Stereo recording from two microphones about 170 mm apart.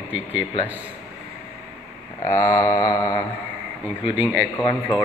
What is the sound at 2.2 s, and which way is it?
Mantra, 20° left (ahead or behind).